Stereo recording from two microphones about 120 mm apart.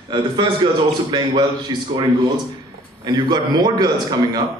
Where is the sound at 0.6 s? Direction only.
45° right (ahead or behind).